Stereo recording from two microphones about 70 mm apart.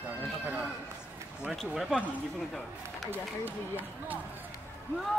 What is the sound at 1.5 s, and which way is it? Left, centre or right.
Speech, centre.